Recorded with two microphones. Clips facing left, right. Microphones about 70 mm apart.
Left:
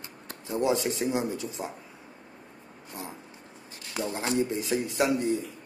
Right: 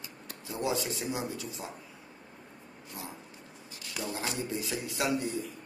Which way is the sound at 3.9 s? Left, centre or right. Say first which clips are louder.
Left 7 dB; left.